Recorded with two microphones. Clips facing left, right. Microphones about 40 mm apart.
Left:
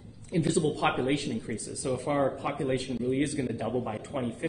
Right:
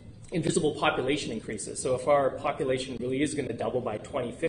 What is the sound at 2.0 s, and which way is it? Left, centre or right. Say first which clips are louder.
Speech: right 5 dB; right.